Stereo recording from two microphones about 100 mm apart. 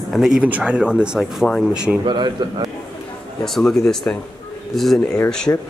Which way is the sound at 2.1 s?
45° right (ahead or behind).